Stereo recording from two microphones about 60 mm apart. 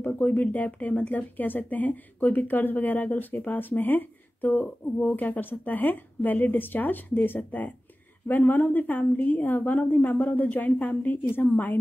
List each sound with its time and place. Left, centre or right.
0.0 s speech: left